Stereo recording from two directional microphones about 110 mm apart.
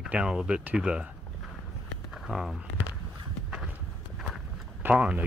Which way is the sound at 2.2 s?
5° right (ahead or behind).